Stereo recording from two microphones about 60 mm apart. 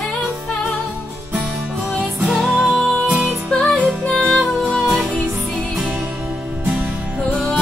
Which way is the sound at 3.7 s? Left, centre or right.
Centre.